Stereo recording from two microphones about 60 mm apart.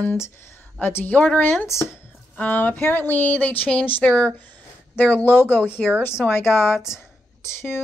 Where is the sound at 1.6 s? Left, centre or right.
Left.